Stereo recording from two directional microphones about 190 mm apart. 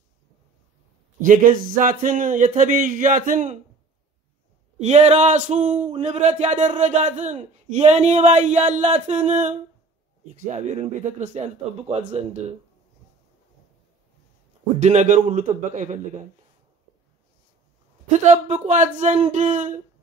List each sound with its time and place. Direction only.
1.2 s a sound: 45° right (ahead or behind)
4.7 s speech: 40° right (ahead or behind)
14.8 s speech: 40° right (ahead or behind)
18.0 s speech: 40° right (ahead or behind)